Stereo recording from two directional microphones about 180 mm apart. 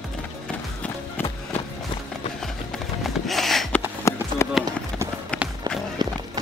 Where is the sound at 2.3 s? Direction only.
Centre (ahead or behind).